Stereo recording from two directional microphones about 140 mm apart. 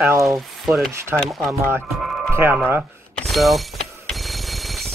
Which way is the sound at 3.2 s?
Centre (ahead or behind).